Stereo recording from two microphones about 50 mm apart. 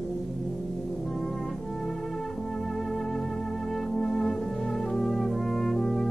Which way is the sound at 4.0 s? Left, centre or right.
Centre.